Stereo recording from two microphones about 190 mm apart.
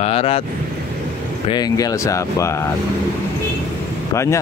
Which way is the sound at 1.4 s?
20° left (ahead or behind).